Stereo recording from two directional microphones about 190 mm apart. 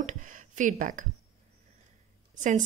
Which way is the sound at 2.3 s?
40° right (ahead or behind).